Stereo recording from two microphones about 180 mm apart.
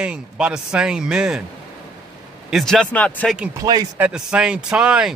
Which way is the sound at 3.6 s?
20° right (ahead or behind).